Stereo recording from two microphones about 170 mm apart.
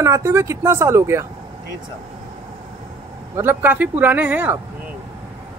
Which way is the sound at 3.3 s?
10° right (ahead or behind).